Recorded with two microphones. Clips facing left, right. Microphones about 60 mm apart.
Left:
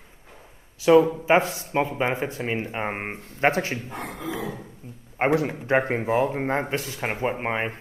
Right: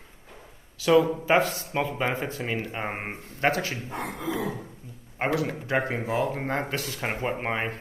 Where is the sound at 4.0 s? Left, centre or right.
Right.